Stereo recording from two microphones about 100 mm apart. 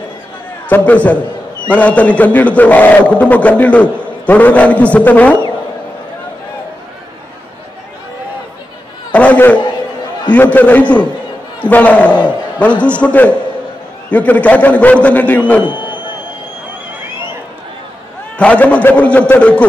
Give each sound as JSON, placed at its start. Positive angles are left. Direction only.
{"t": 0.7, "sound": "a man's voice", "side_deg": 15}
{"t": 9.1, "sound": "a sound", "side_deg": 15}
{"t": 10.3, "sound": "a man's voice", "side_deg": 15}
{"t": 18.4, "sound": "a man's voice", "side_deg": 15}